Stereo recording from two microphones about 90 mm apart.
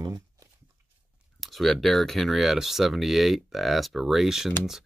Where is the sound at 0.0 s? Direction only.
45° right (ahead or behind).